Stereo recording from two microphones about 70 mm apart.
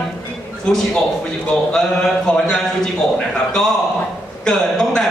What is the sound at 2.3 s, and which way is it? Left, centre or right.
A man's voice, centre.